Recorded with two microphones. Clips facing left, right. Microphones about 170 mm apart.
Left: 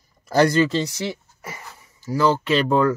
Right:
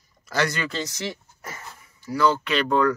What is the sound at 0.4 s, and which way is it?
Speech, 30° left (ahead or behind).